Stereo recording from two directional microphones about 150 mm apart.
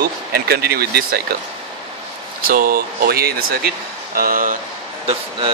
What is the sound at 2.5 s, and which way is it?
Speech, 75° right (ahead or behind).